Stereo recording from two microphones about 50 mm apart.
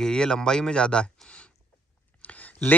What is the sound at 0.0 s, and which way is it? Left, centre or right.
Speech, centre.